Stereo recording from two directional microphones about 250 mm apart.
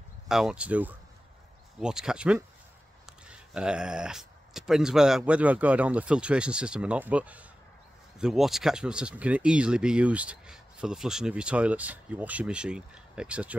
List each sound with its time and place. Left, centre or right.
0.3 s speech: centre